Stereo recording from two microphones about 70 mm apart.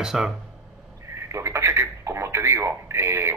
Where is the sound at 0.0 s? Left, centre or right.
Centre.